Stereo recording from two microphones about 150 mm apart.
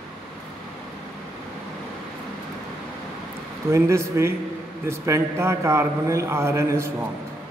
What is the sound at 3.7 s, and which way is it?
A man's voice, 20° right (ahead or behind).